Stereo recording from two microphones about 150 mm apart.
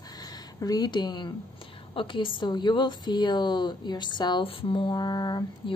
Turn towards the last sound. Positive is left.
turn(degrees=25)  # may be behind; listen again after turning